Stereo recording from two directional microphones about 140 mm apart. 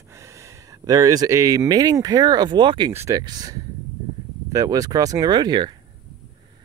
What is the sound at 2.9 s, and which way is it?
Speech, 20° right (ahead or behind).